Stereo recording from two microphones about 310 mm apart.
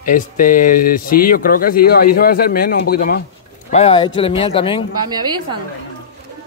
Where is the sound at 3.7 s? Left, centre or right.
Centre.